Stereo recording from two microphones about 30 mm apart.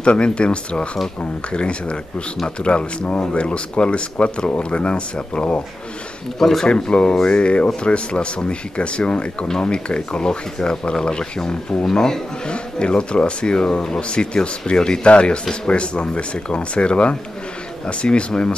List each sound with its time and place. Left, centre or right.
0.0 s speech: left
6.7 s speech: left; by 12.2 s centre
12.4 s speech: left